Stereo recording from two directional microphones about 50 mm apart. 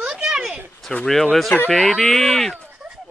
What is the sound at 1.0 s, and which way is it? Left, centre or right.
Speech, centre.